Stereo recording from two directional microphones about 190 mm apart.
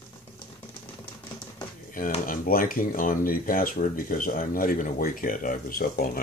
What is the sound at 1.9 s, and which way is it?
Speech, 45° left (ahead or behind).